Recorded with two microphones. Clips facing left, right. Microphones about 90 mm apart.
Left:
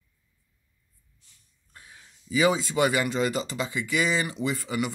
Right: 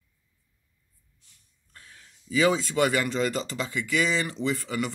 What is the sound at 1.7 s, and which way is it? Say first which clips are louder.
Speech: left 1 dB; 15° left (ahead or behind).